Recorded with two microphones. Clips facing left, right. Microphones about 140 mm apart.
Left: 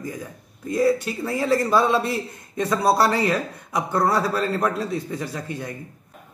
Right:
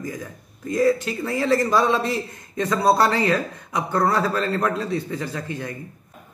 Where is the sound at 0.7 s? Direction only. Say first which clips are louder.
Right 1 dB; 10° left (ahead or behind).